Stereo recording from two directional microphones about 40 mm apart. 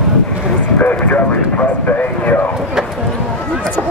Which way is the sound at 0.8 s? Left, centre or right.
Left.